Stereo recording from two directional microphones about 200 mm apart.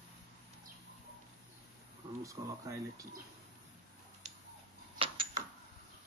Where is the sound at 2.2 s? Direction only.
15° right (ahead or behind).